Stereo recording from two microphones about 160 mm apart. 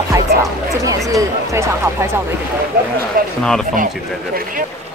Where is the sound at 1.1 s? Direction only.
20° right (ahead or behind).